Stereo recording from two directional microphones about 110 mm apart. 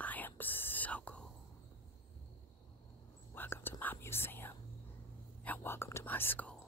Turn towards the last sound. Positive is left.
turn(degrees=15)  # may be behind; listen again after turning